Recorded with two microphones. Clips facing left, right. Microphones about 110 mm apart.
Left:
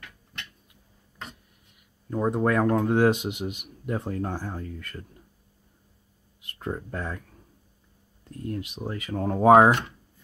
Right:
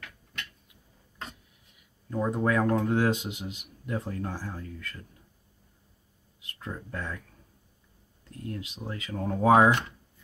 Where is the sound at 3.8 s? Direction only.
45° left (ahead or behind).